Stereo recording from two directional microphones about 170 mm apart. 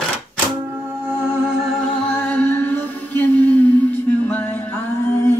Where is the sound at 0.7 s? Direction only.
15° right (ahead or behind).